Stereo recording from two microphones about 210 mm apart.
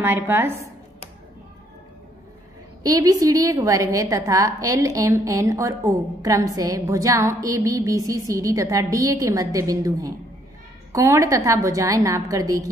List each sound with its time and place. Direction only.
0.0 s a woman's voice: 10° right (ahead or behind)
2.8 s a woman's voice: 15° right (ahead or behind)